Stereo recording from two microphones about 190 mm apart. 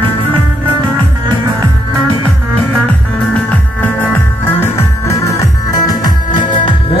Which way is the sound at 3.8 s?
10° left (ahead or behind).